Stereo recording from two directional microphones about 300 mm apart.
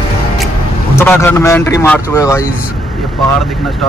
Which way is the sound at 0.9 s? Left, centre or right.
Centre.